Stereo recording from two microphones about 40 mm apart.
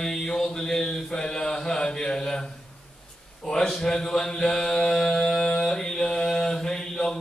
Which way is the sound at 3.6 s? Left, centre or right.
Centre.